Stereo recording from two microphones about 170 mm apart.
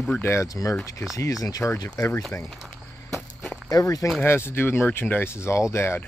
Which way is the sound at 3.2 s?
Centre (ahead or behind).